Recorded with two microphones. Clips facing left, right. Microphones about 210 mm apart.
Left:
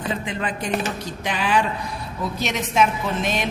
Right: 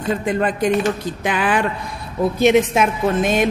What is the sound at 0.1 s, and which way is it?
A woman's voice, 50° right (ahead or behind).